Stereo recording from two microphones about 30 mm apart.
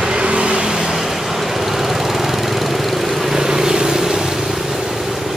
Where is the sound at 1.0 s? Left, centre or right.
Centre.